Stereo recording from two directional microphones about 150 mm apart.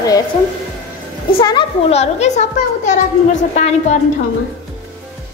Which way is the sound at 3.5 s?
50° left (ahead or behind).